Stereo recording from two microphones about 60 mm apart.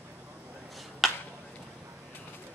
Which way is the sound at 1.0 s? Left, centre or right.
Centre.